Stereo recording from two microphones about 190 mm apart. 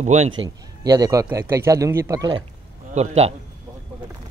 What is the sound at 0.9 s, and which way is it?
Speech, 15° right (ahead or behind).